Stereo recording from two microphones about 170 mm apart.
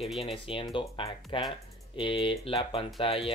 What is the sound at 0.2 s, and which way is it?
Speech, 30° left (ahead or behind).